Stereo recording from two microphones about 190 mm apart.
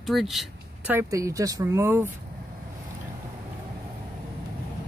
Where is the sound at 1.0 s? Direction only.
15° right (ahead or behind).